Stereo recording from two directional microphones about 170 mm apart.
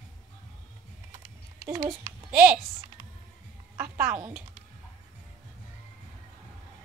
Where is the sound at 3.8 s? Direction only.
15° right (ahead or behind).